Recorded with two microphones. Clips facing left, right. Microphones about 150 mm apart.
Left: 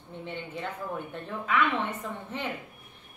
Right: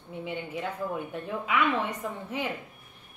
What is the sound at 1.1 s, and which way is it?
A woman's voice, 10° right (ahead or behind).